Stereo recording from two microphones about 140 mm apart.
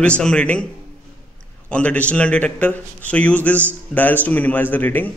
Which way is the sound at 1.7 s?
10° left (ahead or behind).